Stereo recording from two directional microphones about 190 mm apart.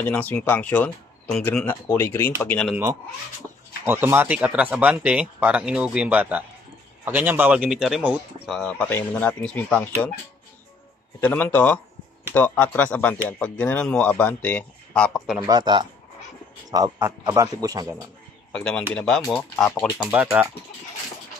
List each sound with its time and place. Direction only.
0.0 s speech: 10° left (ahead or behind)
2.7 s speech: 15° right (ahead or behind)
8.5 s speech: 5° left (ahead or behind)
11.1 s speech: 10° left (ahead or behind)
15.4 s speech: 20° right (ahead or behind)
18.5 s speech: 5° left (ahead or behind)
20.1 s speech: 5° right (ahead or behind)